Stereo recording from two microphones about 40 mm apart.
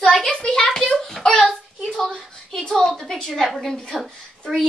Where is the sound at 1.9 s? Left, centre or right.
Centre.